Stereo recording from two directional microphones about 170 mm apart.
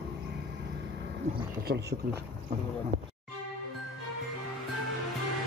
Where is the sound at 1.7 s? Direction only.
90° right.